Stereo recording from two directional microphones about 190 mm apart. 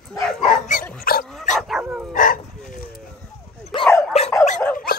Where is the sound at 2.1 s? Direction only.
45° left (ahead or behind).